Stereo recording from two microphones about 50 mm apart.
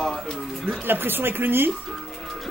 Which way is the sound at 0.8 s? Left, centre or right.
Right.